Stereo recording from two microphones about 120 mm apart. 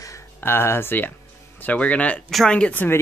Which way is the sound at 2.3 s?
5° left (ahead or behind).